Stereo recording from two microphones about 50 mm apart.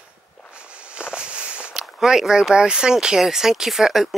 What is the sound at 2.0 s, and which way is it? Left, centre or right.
Speech, centre.